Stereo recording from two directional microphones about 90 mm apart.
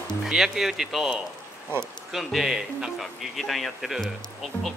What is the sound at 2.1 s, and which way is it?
Speech, 5° right (ahead or behind).